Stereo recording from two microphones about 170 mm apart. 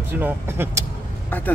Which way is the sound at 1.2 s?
10° left (ahead or behind).